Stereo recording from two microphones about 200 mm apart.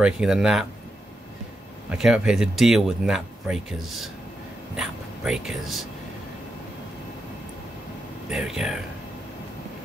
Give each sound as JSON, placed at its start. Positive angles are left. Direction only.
{"t": 0.0, "sound": "speech", "side_deg": -5}
{"t": 1.9, "sound": "speech", "side_deg": -5}
{"t": 8.3, "sound": "speech", "side_deg": 0}